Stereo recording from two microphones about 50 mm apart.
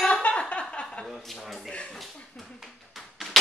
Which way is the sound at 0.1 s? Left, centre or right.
Left.